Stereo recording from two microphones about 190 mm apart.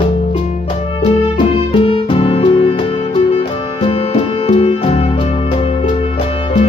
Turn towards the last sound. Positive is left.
turn(degrees=35)  # may be behind; listen again after turning